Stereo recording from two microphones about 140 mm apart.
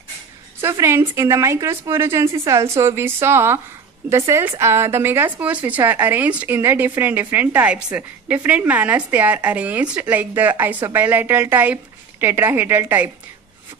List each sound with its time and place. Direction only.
0.6 s a woman's voice: 20° right (ahead or behind)